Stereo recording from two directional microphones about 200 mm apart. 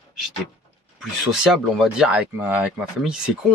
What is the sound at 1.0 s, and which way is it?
Speech, centre (ahead or behind).